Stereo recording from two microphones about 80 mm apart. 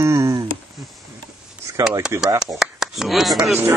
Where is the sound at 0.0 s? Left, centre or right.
Right.